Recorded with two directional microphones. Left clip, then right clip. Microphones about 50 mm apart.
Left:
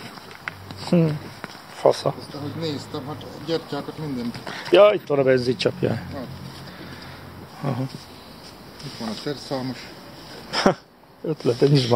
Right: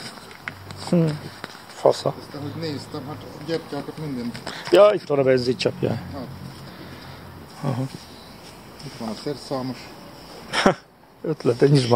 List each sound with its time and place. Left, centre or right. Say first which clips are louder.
0.5 s a sound: left 1 dB; centre
1.8 s speech: even; centre
7.6 s speech: even; centre
9.0 s speech: even; left
10.5 s a sound: right 1 dB; centre
11.2 s speech: right 1 dB; centre